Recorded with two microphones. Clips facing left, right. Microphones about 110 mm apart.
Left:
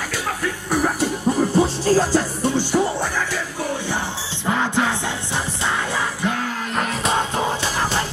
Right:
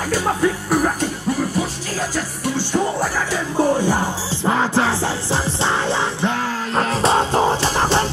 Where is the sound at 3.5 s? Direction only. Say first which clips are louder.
Right 12 dB; 40° right (ahead or behind).